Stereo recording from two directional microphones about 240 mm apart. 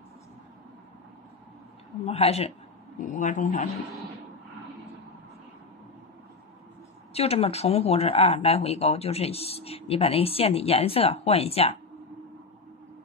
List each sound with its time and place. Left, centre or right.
2.0 s a man's voice: left
7.2 s speech: left